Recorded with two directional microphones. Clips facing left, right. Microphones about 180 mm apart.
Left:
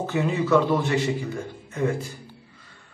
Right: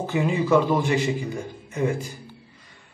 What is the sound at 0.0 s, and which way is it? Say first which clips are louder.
A man's voice: right 1 dB; 10° right (ahead or behind).